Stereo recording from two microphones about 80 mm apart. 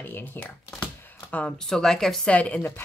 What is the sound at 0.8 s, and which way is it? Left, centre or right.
Speech, centre.